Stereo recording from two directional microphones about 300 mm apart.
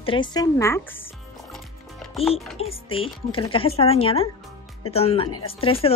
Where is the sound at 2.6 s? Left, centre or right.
Centre.